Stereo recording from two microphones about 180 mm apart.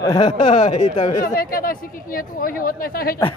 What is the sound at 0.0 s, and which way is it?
Speech, 20° left (ahead or behind).